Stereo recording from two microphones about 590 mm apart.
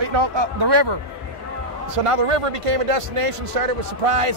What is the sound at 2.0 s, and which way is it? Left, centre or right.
A man's voice, right.